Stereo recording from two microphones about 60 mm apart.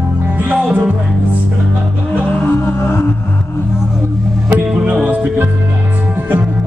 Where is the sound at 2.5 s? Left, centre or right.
Left.